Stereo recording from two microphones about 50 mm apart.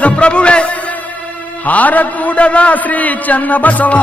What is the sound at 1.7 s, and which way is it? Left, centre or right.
A man's voice, left.